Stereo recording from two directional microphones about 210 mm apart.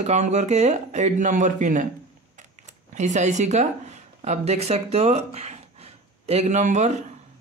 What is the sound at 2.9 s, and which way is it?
Speech, 35° right (ahead or behind).